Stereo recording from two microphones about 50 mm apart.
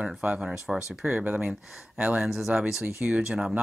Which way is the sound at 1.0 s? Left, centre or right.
Right.